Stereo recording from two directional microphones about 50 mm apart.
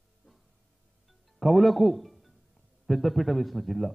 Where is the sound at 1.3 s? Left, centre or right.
Centre.